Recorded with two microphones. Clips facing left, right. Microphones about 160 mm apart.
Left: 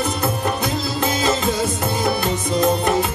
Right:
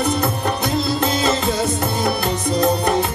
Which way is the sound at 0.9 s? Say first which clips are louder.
Right 1 dB; centre (ahead or behind).